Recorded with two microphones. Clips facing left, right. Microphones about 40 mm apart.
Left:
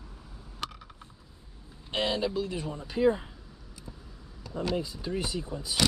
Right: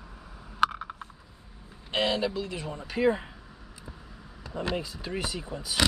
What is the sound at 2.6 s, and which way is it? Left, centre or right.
Speech, right.